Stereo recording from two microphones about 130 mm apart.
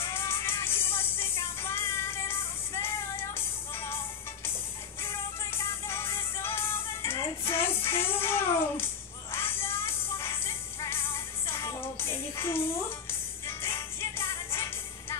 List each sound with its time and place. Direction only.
0.0 s music: 20° left (ahead or behind)
5.0 s music: 20° left (ahead or behind)